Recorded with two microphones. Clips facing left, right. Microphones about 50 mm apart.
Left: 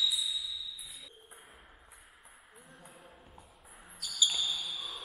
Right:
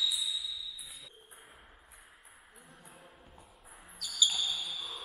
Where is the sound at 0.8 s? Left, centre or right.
Centre.